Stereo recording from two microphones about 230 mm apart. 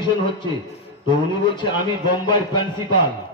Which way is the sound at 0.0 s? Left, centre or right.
Centre.